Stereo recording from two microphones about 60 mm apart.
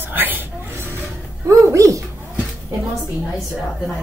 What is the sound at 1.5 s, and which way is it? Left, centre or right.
Speech, right.